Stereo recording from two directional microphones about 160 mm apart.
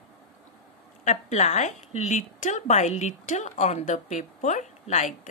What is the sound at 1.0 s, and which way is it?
A woman's voice, 50° left (ahead or behind).